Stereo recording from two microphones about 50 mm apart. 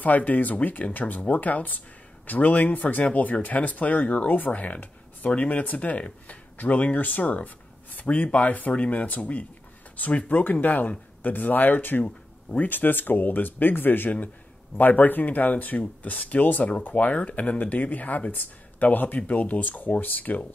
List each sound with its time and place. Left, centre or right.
0.0 s speech: left
12.0 s a sound: left
12.6 s speech: left